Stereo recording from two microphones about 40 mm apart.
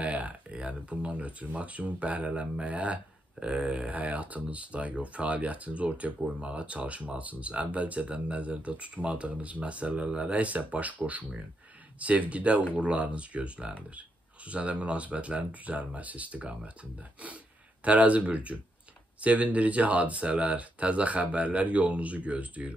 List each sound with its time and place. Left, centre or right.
0.0 s speech: right
17.8 s speech: right